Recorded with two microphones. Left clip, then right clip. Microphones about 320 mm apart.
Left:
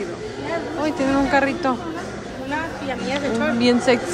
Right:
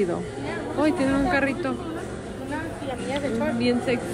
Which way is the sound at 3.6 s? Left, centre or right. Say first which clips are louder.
Left 9 dB; centre.